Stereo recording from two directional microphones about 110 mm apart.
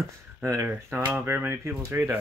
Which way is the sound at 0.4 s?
20° right (ahead or behind).